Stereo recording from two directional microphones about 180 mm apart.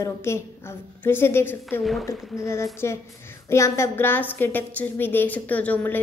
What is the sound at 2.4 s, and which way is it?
A woman's voice, 15° left (ahead or behind).